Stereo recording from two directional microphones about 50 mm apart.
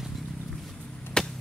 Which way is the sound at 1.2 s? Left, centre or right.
Centre.